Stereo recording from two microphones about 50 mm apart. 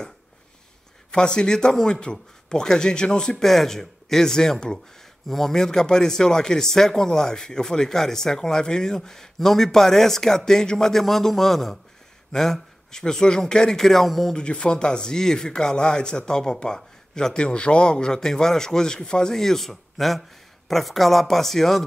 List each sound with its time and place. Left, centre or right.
1.1 s speech: centre
14.3 s speech: centre